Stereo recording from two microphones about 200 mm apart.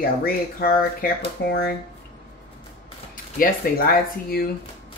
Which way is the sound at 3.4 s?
45° left (ahead or behind).